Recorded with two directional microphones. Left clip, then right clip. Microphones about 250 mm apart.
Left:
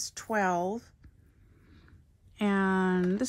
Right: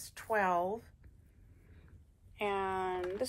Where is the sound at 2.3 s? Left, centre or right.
Left.